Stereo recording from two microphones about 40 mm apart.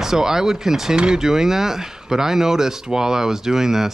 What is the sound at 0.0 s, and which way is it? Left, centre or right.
Speech, centre.